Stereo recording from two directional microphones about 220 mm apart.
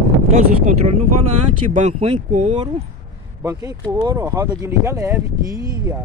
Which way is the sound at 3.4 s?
15° right (ahead or behind).